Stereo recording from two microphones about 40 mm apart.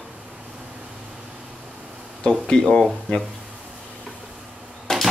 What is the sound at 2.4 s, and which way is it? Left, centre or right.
Speech, left.